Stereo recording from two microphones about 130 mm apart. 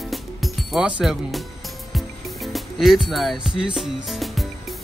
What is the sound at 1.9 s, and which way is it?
Music, centre (ahead or behind).